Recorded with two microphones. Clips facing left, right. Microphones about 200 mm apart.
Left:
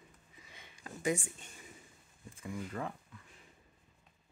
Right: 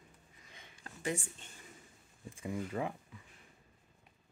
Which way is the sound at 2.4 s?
15° right (ahead or behind).